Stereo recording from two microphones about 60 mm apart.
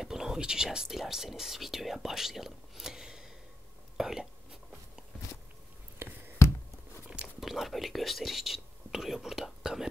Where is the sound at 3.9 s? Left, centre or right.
Centre.